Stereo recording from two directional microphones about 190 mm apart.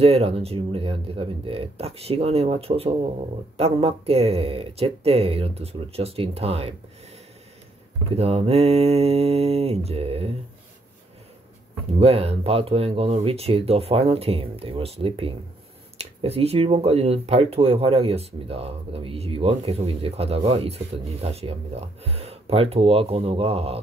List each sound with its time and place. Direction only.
0.0 s speech: 30° right (ahead or behind)
8.2 s speech: 30° right (ahead or behind)
12.0 s speech: 30° right (ahead or behind)